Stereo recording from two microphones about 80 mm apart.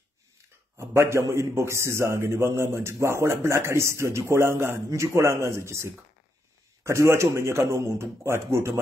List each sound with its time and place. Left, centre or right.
0.7 s a man's voice: right